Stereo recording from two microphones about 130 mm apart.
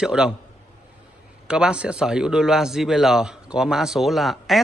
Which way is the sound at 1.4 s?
5° right (ahead or behind).